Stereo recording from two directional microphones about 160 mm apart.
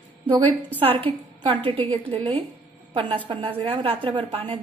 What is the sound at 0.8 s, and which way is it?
A woman's voice, 35° right (ahead or behind).